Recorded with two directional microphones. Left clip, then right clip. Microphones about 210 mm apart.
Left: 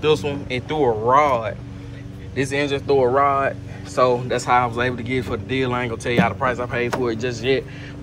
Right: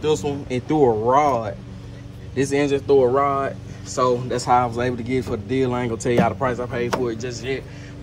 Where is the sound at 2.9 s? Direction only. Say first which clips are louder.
Left 1 dB; 25° right (ahead or behind).